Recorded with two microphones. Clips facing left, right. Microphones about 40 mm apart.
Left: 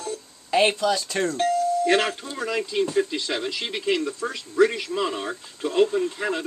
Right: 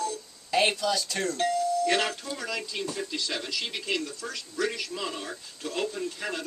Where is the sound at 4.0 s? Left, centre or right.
Left.